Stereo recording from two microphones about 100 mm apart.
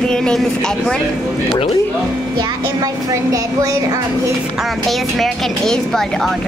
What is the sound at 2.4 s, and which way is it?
A woman's voice, 40° right (ahead or behind).